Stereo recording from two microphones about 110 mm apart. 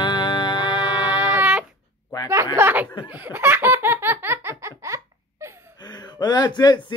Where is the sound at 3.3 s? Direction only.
20° right (ahead or behind).